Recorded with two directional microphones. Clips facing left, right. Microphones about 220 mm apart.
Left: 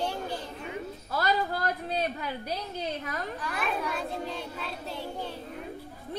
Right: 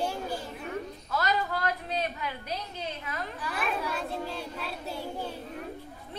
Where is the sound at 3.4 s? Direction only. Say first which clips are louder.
Right 1 dB; centre (ahead or behind).